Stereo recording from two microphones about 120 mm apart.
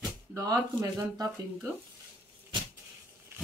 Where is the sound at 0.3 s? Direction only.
25° right (ahead or behind).